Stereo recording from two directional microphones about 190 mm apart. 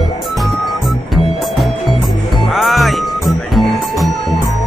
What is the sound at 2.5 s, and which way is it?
Music, centre (ahead or behind).